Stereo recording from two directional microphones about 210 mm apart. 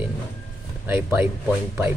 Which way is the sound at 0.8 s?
10° right (ahead or behind).